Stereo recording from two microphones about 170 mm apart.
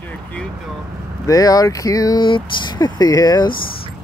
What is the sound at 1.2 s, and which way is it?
Speech, 20° left (ahead or behind).